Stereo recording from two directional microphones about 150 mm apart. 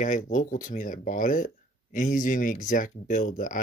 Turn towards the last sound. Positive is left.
turn(degrees=60)  # may be behind; listen again after turning